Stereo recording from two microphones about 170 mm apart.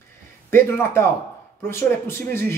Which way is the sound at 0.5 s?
15° left (ahead or behind).